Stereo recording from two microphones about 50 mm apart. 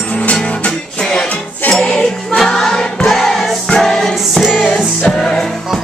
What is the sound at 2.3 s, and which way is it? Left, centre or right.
Choir, centre.